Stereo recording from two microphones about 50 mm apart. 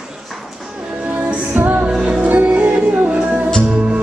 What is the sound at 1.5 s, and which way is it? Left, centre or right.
Music, right.